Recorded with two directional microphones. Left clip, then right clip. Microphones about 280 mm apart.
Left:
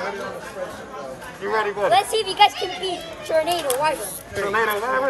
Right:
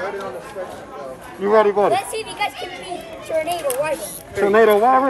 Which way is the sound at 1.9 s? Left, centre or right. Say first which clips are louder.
Left 2 dB; centre.